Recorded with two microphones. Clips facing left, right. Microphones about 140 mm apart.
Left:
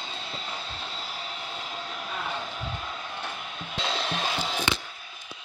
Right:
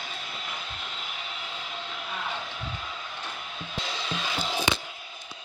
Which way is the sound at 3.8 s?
70° left (ahead or behind).